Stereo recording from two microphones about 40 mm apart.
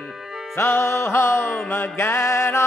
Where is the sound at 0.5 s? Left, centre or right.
Left.